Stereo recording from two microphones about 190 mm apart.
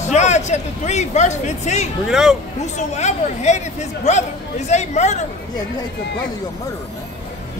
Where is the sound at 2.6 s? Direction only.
35° left (ahead or behind).